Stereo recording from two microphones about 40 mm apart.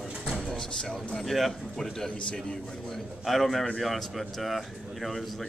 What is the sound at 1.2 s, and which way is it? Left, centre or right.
Speech, centre.